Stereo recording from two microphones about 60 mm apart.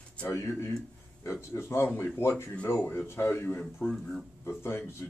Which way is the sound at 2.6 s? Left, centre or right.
Left.